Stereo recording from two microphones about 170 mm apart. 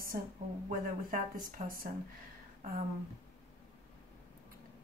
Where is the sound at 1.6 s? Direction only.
55° right (ahead or behind).